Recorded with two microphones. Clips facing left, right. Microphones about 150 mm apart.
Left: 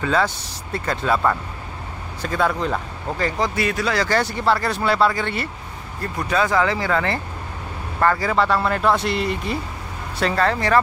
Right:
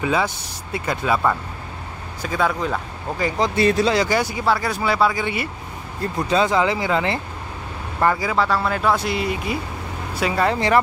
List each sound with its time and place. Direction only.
0.0 s speech: 10° right (ahead or behind)
6.1 s speech: 20° right (ahead or behind)